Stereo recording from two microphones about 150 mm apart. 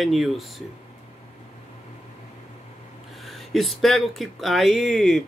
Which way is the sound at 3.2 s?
Centre (ahead or behind).